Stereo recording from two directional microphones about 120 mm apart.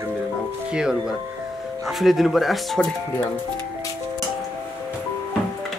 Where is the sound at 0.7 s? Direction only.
5° right (ahead or behind).